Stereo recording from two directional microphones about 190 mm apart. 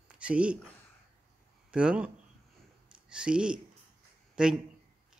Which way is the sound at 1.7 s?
5° right (ahead or behind).